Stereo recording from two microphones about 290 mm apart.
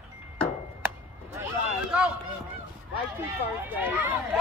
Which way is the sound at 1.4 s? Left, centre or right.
Centre.